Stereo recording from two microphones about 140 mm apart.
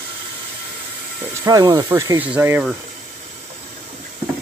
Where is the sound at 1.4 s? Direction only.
25° right (ahead or behind).